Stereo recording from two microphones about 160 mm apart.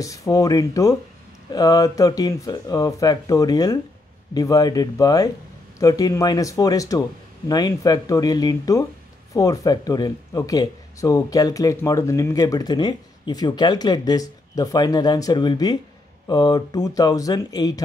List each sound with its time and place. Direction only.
0.0 s speech: 20° left (ahead or behind)